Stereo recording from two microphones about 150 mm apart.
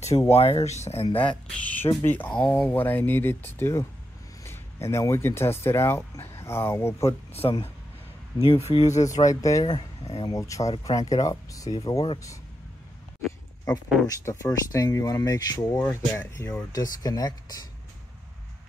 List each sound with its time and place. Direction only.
0.3 s speech: 45° left (ahead or behind)
1.0 s speech: 35° left (ahead or behind)
1.5 s speech: 10° left (ahead or behind)
7.4 s speech: 30° left (ahead or behind)
8.5 s speech: 40° left (ahead or behind)
9.0 s speech: 20° left (ahead or behind)
14.0 s speech: 20° left (ahead or behind)